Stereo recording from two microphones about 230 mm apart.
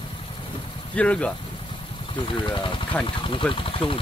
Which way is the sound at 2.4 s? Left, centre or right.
Left.